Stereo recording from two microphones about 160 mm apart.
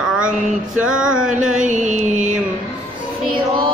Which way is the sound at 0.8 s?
5° right (ahead or behind).